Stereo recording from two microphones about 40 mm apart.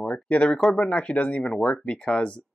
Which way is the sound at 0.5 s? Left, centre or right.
Centre.